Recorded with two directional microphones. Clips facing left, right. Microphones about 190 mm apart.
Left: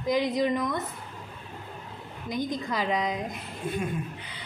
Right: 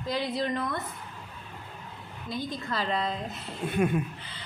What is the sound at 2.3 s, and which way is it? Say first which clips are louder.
A woman's voice: left 3 dB; 15° left (ahead or behind).